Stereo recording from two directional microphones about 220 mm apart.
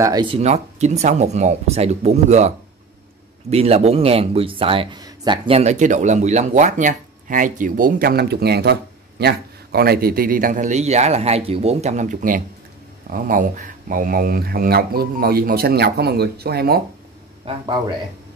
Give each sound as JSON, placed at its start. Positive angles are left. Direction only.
{"t": 0.0, "sound": "speech", "side_deg": -20}
{"t": 17.5, "sound": "a man's voice", "side_deg": -20}